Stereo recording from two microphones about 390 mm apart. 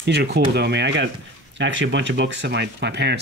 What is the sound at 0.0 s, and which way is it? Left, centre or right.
Speech, right.